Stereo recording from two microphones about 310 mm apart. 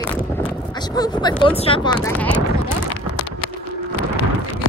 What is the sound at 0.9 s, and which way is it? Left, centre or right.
Speech, centre.